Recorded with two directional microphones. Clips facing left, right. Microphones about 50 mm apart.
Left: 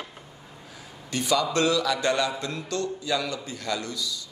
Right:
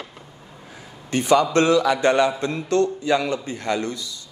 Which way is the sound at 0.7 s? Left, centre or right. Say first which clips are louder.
Right 6 dB; right.